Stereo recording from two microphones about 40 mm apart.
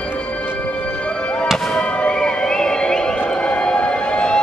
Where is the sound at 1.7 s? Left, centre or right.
Left.